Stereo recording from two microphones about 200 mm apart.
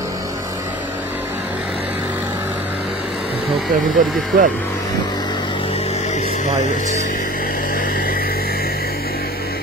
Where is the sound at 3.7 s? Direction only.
40° right (ahead or behind).